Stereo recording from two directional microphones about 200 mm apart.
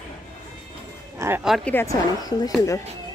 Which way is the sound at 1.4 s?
Centre (ahead or behind).